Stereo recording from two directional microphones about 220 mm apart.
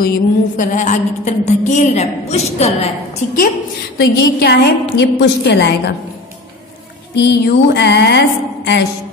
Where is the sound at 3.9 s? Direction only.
45° left (ahead or behind).